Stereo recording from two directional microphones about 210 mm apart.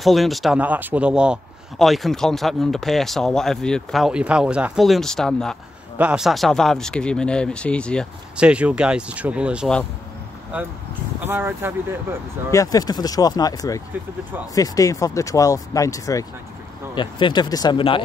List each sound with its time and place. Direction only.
0.0 s a man's voice: centre (ahead or behind)
11.2 s speech: 10° right (ahead or behind)
12.4 s speech: 15° left (ahead or behind)